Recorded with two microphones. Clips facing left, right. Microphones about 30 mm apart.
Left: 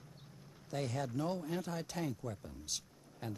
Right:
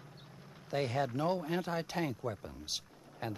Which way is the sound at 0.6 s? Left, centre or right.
Right.